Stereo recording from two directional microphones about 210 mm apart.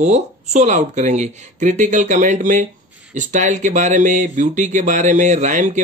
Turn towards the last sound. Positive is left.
turn(degrees=-35)  # may be behind; listen again after turning